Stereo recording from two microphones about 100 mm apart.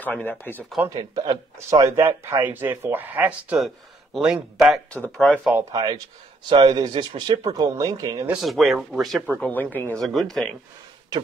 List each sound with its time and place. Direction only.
0.0 s speech: 15° left (ahead or behind)
0.8 s a man's voice: 35° right (ahead or behind)
2.0 s speech: 25° right (ahead or behind)
3.5 s speech: centre (ahead or behind)
5.1 s speech: 10° left (ahead or behind)
5.7 s a man's voice: 40° right (ahead or behind)
8.4 s speech: centre (ahead or behind)
9.3 s speech: 15° left (ahead or behind)
9.9 s speech: centre (ahead or behind)